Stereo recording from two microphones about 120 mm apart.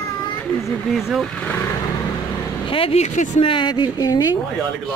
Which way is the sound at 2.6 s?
50° left (ahead or behind).